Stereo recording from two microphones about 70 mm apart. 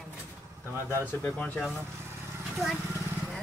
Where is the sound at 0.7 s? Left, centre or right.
Left.